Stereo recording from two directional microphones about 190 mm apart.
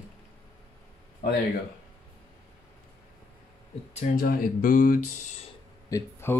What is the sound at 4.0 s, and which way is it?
Speech, 50° left (ahead or behind).